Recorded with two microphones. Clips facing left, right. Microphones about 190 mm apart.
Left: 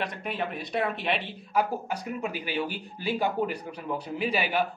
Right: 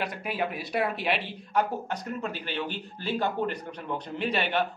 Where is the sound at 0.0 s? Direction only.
Centre (ahead or behind).